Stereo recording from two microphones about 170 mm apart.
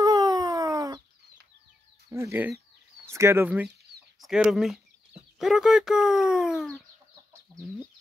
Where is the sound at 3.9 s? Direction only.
75° right (ahead or behind).